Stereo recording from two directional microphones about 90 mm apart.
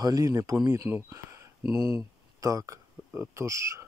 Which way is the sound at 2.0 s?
40° right (ahead or behind).